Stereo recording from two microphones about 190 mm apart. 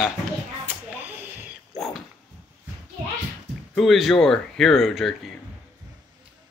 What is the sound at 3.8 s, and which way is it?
Speech, centre (ahead or behind).